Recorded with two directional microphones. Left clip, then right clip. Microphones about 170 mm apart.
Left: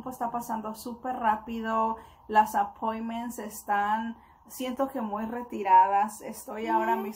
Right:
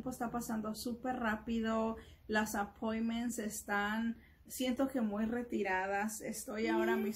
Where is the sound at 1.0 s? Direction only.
25° right (ahead or behind).